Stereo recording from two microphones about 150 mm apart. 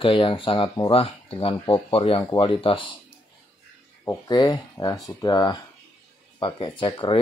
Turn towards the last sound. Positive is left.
turn(degrees=35)  # may be behind; listen again after turning